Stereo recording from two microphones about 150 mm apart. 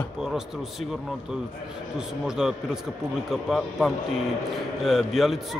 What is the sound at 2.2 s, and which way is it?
A man's voice, 5° right (ahead or behind).